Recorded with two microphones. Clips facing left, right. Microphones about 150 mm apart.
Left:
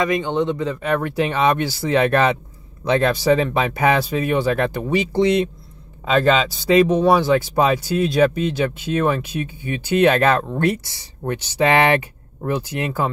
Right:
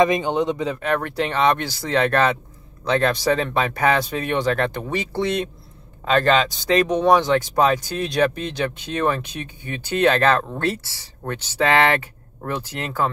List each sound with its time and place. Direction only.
0.0 s speech: 20° right (ahead or behind)
0.8 s speech: 5° left (ahead or behind)